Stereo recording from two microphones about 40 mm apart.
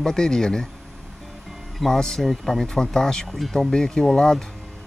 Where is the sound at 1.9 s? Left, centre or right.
Centre.